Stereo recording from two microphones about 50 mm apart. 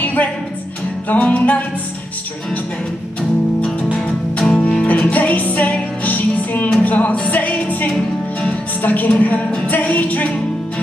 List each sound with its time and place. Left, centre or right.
0.0 s music: left
4.4 s music: centre
4.8 s music: left